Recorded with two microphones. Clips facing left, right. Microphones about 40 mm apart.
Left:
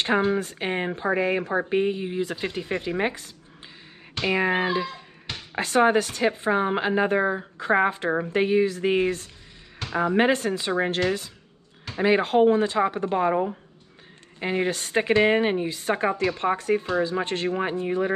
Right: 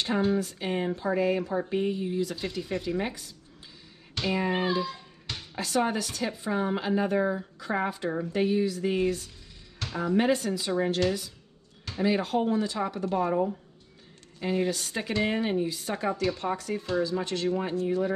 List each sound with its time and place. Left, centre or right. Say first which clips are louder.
0.0 s a woman's voice: left 4 dB; left
4.2 s a sound: left 5 dB; left
5.6 s a woman's voice: left 8 dB; left